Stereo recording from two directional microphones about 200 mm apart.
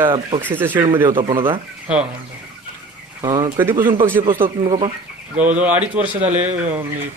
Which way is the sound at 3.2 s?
20° right (ahead or behind).